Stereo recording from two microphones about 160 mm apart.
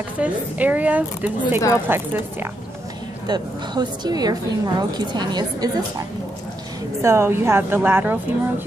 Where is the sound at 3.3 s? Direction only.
25° right (ahead or behind).